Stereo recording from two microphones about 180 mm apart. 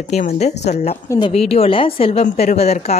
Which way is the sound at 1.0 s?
20° left (ahead or behind).